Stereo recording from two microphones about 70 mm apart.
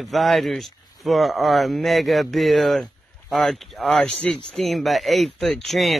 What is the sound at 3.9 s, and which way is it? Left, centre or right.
Speech, centre.